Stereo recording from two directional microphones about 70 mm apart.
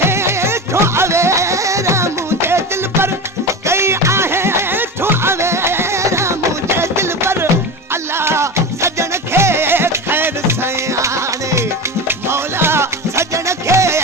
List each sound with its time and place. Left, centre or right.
0.0 s music: right
12.3 s music: right